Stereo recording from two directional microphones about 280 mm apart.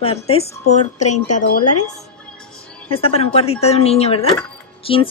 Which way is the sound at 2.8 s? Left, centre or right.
Centre.